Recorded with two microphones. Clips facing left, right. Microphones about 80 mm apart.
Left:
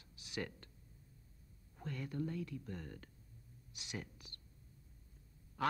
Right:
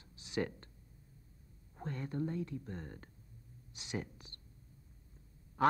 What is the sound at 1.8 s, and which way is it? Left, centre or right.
Speech, right.